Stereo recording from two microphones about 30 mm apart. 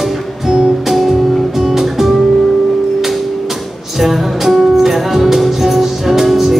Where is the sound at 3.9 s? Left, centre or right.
Centre.